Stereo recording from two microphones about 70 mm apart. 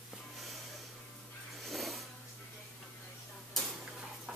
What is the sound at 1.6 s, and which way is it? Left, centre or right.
Vehicle, centre.